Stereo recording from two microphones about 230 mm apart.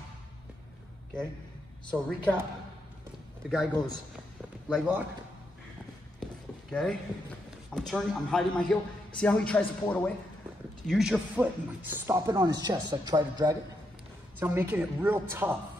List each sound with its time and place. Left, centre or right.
1.9 s a man's voice: centre
3.4 s a man's voice: centre
6.7 s a man's voice: centre